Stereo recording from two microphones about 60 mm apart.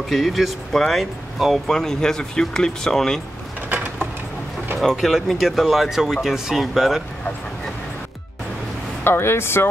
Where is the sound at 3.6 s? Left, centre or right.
Right.